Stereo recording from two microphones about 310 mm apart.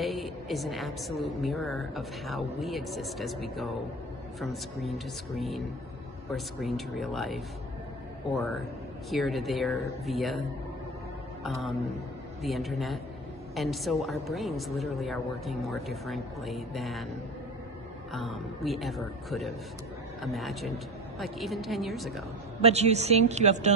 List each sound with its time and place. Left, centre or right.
0.0 s a woman's voice: centre
9.1 s a woman's voice: centre
11.4 s a woman's voice: centre
18.1 s a woman's voice: centre
22.6 s a man's voice: centre